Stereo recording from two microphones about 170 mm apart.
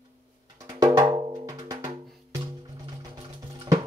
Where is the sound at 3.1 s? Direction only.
25° right (ahead or behind).